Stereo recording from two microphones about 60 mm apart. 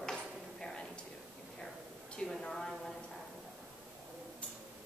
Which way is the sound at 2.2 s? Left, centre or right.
Centre.